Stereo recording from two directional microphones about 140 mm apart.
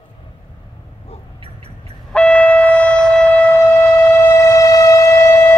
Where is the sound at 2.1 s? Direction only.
10° left (ahead or behind).